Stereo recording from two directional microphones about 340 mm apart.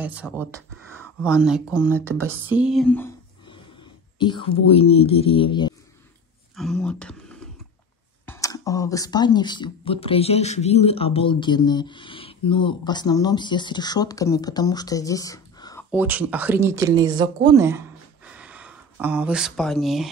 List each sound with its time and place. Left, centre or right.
0.0 s speech: centre
6.5 s speech: centre
15.9 s speech: centre